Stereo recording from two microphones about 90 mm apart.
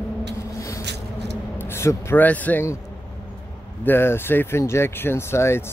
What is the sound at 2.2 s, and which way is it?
Speech, 15° left (ahead or behind).